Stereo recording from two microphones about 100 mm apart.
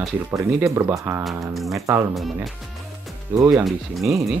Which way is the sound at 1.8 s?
25° right (ahead or behind).